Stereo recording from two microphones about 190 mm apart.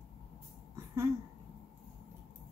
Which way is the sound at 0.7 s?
15° right (ahead or behind).